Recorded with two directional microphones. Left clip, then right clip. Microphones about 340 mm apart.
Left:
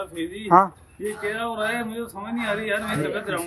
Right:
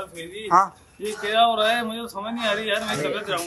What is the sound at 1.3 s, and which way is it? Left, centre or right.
A man's voice, centre.